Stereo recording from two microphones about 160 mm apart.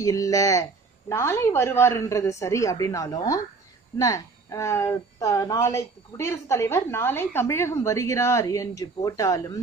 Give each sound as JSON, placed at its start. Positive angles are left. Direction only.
{"t": 0.0, "sound": "a woman's voice", "side_deg": 20}